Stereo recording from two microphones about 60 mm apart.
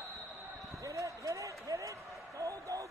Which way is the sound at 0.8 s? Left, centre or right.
Right.